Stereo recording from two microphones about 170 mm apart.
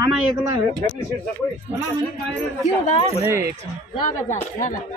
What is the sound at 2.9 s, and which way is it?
Speech, 35° left (ahead or behind).